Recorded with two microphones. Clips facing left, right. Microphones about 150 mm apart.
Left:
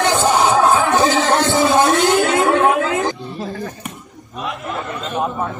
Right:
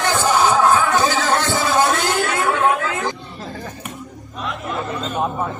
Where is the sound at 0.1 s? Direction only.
20° left (ahead or behind).